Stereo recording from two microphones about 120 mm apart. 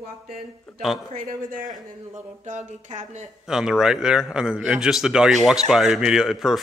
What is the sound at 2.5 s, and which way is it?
Speech, 75° right (ahead or behind).